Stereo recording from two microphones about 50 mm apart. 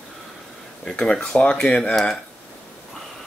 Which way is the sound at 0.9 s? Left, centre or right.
Centre.